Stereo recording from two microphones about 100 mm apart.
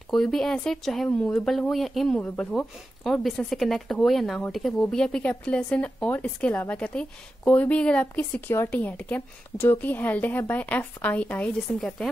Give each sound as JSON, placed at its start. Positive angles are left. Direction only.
{"t": 0.1, "sound": "a woman's voice", "side_deg": 0}